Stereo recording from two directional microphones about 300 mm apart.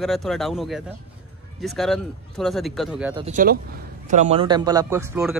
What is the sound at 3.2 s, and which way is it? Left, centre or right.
A man's voice, right.